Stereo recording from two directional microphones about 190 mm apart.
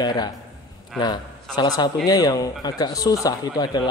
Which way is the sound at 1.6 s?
25° left (ahead or behind).